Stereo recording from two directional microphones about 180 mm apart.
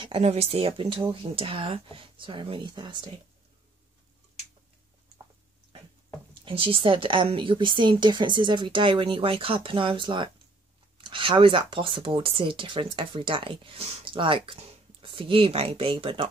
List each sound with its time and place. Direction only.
0.0 s speech: 35° right (ahead or behind)
6.4 s speech: 30° right (ahead or behind)